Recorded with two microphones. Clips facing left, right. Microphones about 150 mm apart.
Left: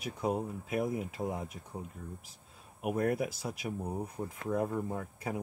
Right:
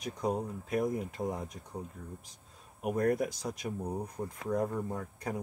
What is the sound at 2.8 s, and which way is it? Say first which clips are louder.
Speech: right 2 dB; 5° left (ahead or behind).